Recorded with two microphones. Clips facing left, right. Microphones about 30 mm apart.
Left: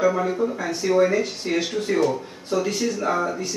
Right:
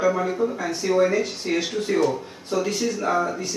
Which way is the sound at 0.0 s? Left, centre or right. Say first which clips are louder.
Left 1 dB; centre.